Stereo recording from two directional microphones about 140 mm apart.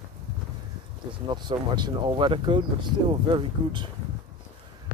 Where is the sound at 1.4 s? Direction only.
35° right (ahead or behind).